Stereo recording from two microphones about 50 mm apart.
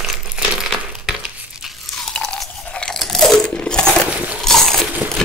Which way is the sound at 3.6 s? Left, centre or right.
Centre.